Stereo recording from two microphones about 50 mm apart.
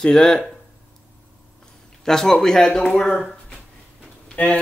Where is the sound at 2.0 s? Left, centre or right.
Centre.